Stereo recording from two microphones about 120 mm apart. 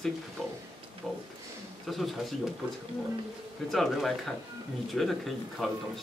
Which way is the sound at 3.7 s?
Centre (ahead or behind).